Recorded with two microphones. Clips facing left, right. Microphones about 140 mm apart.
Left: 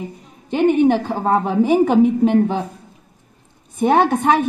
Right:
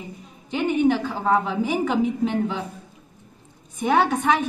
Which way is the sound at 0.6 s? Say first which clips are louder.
Left 6 dB; 50° left (ahead or behind).